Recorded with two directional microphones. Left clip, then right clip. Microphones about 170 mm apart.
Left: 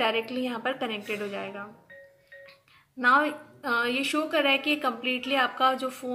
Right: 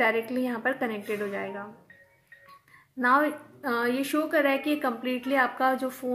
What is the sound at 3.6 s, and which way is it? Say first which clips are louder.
A woman's voice: left 1 dB; 25° right (ahead or behind).